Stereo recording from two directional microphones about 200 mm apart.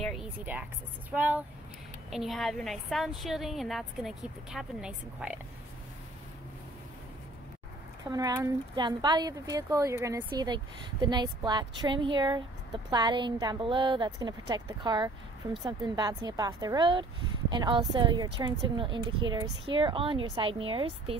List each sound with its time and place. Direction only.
0.0 s music: centre (ahead or behind)
1.1 s a woman's voice: 10° right (ahead or behind)
8.1 s speech: 20° right (ahead or behind)